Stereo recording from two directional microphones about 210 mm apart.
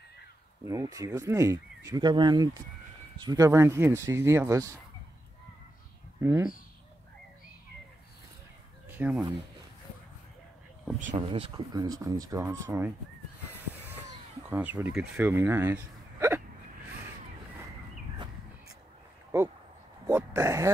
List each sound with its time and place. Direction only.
0.7 s speech: 15° right (ahead or behind)
6.2 s speech: 10° right (ahead or behind)
8.8 s fowl: 10° right (ahead or behind)
11.1 s speech: 25° right (ahead or behind)
13.6 s a sound: 10° right (ahead or behind)
14.5 s speech: 10° right (ahead or behind)
20.1 s speech: 10° right (ahead or behind)